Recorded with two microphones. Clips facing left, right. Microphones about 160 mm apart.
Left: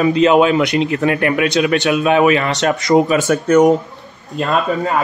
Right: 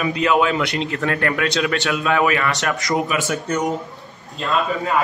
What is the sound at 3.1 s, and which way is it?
Speech, 40° left (ahead or behind).